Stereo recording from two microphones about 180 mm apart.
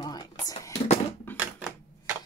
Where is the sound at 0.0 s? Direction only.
25° left (ahead or behind).